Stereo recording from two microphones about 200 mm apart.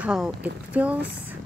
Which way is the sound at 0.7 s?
5° right (ahead or behind).